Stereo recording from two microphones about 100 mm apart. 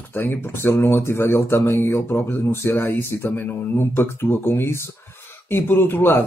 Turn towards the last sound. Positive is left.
turn(degrees=20)  # may be behind; listen again after turning